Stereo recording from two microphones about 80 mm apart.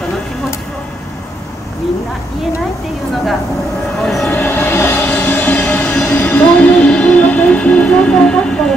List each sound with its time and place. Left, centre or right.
4.0 s train: centre
4.3 s music: left